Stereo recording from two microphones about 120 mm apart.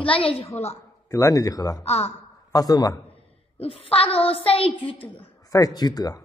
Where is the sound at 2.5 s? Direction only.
30° left (ahead or behind).